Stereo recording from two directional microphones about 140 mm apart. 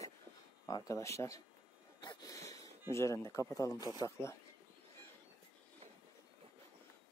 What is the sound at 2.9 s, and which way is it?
Speech, 20° left (ahead or behind).